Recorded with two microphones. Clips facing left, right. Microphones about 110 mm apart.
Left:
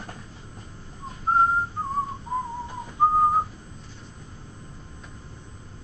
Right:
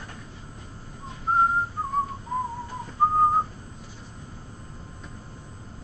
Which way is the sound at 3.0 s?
20° left (ahead or behind).